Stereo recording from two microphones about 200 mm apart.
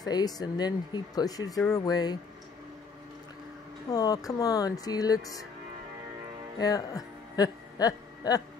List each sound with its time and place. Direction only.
0.0 s speech: 20° left (ahead or behind)
3.9 s speech: 20° left (ahead or behind)
6.6 s speech: 15° left (ahead or behind)